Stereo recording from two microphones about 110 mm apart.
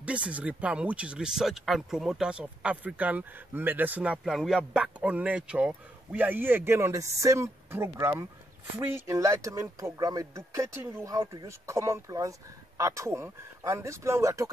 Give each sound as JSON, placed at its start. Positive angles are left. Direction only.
{"t": 0.0, "sound": "speech", "side_deg": -10}